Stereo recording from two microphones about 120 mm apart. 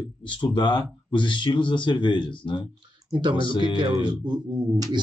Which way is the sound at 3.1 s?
40° right (ahead or behind).